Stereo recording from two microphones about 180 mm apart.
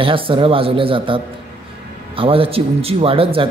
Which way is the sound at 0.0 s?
30° right (ahead or behind).